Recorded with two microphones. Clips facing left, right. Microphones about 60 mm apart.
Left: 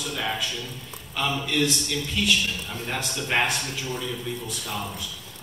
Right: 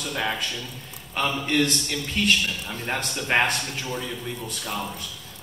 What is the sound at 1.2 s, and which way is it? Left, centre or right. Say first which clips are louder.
A man's voice: right 2 dB; right.